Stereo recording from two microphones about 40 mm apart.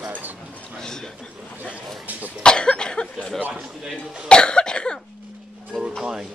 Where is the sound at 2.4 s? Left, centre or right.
Left.